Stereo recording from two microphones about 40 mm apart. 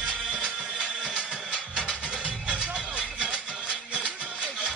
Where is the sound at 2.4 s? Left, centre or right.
Right.